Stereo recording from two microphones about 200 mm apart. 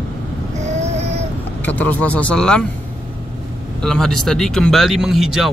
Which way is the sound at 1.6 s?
10° left (ahead or behind).